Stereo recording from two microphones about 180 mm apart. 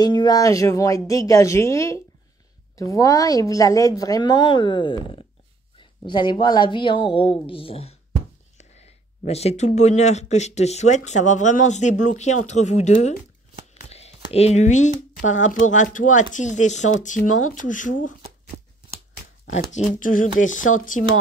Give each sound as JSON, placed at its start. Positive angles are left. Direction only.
{"t": 0.0, "sound": "a woman's voice", "side_deg": 20}
{"t": 13.8, "sound": "a sound", "side_deg": 35}
{"t": 14.3, "sound": "speech", "side_deg": 35}
{"t": 20.0, "sound": "speech", "side_deg": 50}